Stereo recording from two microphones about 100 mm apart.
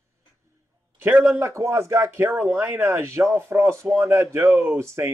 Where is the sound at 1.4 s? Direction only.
25° right (ahead or behind).